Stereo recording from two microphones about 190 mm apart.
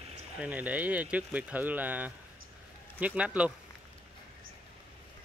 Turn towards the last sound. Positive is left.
turn(degrees=-5)  # may be behind; listen again after turning